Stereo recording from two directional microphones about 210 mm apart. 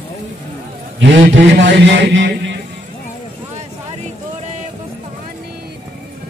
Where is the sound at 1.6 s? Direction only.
55° right (ahead or behind).